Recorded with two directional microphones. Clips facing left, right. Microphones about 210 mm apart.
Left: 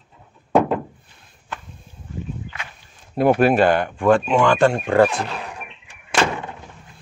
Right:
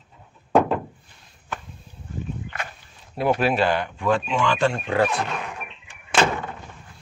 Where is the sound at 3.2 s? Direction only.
50° left (ahead or behind).